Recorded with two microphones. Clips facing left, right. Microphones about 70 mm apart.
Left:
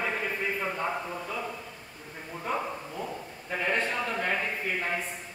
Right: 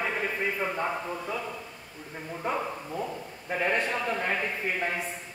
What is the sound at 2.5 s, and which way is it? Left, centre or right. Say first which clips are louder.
A man's voice: right 1 dB; centre.